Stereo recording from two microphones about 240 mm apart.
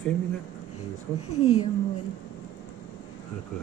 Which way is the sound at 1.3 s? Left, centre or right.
Left.